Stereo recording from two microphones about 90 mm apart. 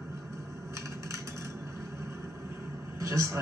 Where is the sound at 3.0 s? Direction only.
35° right (ahead or behind).